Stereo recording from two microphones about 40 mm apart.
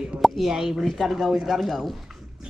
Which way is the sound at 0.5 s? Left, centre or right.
Centre.